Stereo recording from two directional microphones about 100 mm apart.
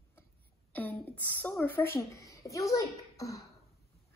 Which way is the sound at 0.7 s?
15° left (ahead or behind).